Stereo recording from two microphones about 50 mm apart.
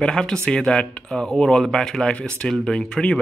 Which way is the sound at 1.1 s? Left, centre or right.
Centre.